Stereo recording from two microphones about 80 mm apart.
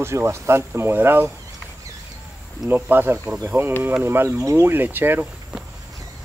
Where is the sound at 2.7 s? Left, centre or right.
Right.